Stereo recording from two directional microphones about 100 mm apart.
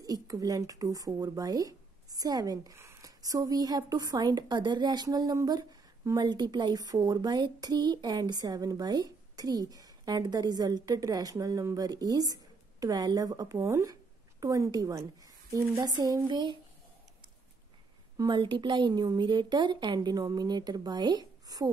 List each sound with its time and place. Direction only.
0.0 s a woman's voice: 35° right (ahead or behind)
16.3 s speech: 50° right (ahead or behind)
18.1 s speech: 45° right (ahead or behind)